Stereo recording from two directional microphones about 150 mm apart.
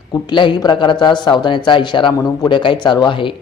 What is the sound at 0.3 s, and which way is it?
A man's voice, 30° left (ahead or behind).